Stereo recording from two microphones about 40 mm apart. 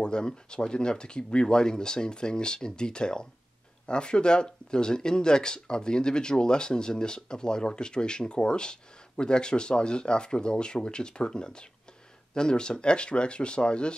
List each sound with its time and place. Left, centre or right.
0.0 s speech: left